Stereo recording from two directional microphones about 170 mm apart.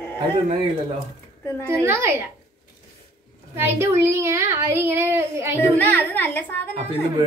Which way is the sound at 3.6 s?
15° right (ahead or behind).